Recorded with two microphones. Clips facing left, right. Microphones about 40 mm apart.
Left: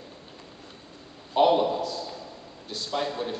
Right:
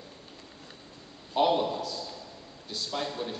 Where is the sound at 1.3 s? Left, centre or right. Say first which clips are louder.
Left 4 dB; centre.